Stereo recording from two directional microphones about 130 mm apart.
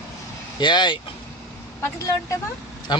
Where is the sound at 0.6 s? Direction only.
35° left (ahead or behind).